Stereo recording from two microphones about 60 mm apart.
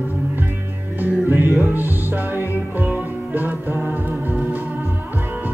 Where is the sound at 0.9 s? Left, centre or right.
Right.